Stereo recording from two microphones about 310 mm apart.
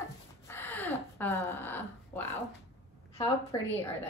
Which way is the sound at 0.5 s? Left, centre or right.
Centre.